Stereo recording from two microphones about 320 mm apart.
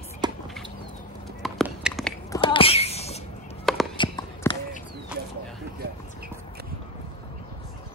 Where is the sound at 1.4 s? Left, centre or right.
Centre.